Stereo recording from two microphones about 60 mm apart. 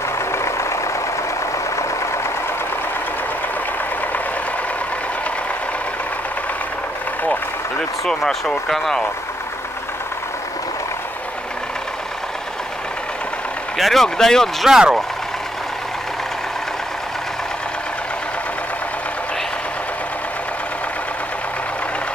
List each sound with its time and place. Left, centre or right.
0.3 s vehicle: left
8.0 s speech: centre
13.7 s speech: centre
14.6 s speech: centre